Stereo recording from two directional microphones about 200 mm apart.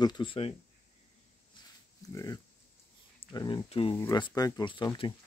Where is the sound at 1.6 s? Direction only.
20° left (ahead or behind).